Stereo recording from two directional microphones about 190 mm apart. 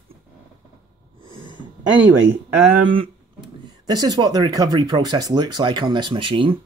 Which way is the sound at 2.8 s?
30° right (ahead or behind).